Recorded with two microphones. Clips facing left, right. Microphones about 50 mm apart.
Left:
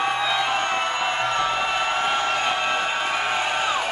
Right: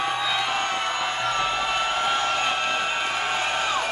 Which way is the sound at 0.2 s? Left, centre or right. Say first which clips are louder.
Left 2 dB; centre.